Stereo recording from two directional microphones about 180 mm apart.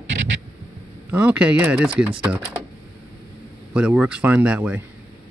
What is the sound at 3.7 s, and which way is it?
Speech, 10° right (ahead or behind).